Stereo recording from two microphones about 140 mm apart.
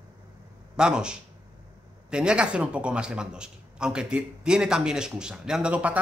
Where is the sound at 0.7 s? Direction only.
5° right (ahead or behind).